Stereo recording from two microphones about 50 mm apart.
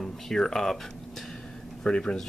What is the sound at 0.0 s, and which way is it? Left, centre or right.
Speech, centre.